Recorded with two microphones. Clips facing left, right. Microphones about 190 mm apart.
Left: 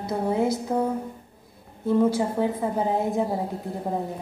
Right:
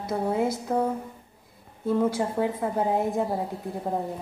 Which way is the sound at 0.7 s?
10° left (ahead or behind).